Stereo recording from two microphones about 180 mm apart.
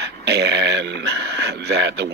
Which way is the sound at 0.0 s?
70° right (ahead or behind).